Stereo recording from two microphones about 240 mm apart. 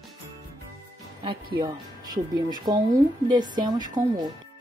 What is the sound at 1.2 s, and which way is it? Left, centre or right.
A woman's voice, centre.